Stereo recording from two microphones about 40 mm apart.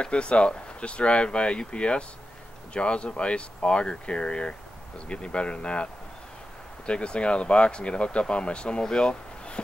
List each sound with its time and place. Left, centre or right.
0.0 s speech: left
6.9 s speech: left
8.8 s a sound: left